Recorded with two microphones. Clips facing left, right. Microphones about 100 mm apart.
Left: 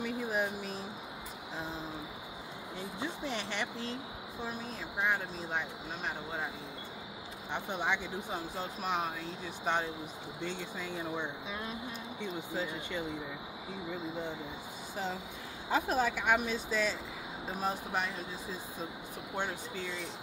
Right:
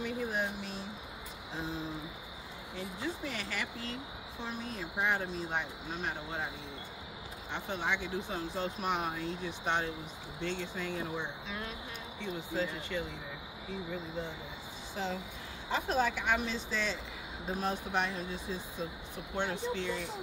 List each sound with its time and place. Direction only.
0.0 s a sound: 5° left (ahead or behind)
3.0 s a sound: 25° left (ahead or behind)
4.5 s speech: centre (ahead or behind)
7.5 s speech: 15° left (ahead or behind)
8.7 s speech: centre (ahead or behind)
12.2 s speech: 15° left (ahead or behind)
15.7 s speech: 5° left (ahead or behind)